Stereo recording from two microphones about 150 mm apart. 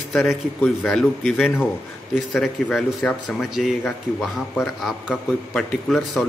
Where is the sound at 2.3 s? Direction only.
Centre (ahead or behind).